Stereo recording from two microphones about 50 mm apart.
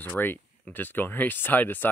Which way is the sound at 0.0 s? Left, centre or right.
Left.